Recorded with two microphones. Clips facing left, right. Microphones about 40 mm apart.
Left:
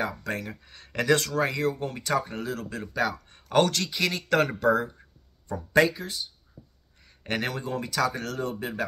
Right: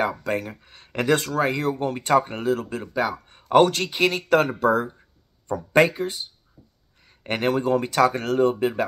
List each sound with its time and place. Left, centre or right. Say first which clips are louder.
0.2 s speech: right 6 dB; right
0.5 s speech: right 2 dB; centre
1.5 s speech: right 4 dB; right
2.7 s speech: right 3 dB; centre
3.7 s speech: right 6 dB; right
4.3 s speech: right 2 dB; centre
5.5 s speech: right 4 dB; right
7.2 s speech: right 6 dB; right
7.6 s speech: right 8 dB; right